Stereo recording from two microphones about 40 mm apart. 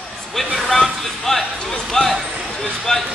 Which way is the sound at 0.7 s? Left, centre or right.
Centre.